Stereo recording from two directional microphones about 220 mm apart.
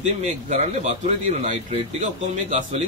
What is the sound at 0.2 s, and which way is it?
A man's voice, 30° right (ahead or behind).